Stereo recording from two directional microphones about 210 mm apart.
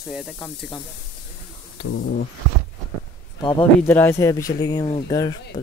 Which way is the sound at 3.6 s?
10° left (ahead or behind).